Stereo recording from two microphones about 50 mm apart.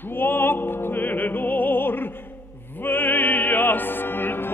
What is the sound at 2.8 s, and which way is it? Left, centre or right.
Music, left.